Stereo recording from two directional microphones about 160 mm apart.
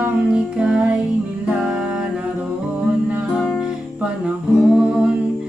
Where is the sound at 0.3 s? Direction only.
5° right (ahead or behind).